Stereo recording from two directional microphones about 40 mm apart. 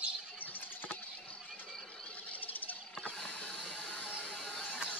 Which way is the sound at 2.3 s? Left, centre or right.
Left.